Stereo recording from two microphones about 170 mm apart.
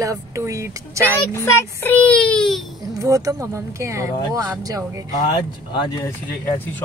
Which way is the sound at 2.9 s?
20° right (ahead or behind).